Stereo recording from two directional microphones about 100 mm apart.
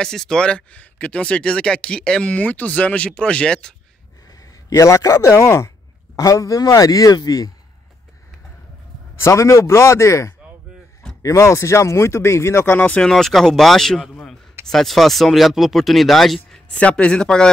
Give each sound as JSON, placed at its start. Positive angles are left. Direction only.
{"t": 0.0, "sound": "speech", "side_deg": 5}
{"t": 4.6, "sound": "a man's voice", "side_deg": 35}
{"t": 9.2, "sound": "speech", "side_deg": 30}
{"t": 13.1, "sound": "speech", "side_deg": 0}